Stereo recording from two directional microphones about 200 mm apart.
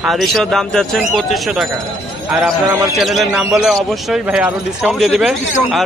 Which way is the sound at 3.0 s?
Centre (ahead or behind).